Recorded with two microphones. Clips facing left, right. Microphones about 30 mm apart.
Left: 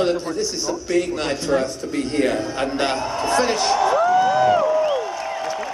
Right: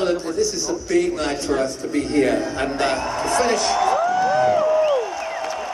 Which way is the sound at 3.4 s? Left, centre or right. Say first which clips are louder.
Even; left.